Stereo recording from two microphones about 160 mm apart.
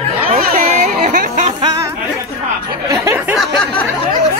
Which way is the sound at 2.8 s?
15° right (ahead or behind).